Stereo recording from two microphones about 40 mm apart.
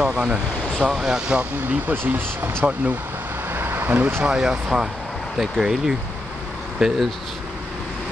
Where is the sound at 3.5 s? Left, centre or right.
Right.